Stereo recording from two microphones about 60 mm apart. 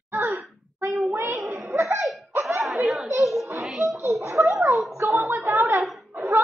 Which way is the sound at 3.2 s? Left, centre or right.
Centre.